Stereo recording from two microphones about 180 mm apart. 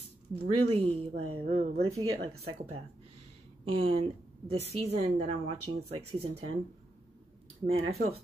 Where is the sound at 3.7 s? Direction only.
30° right (ahead or behind).